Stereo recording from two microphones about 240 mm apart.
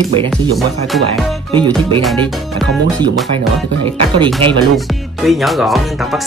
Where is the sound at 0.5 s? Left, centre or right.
Centre.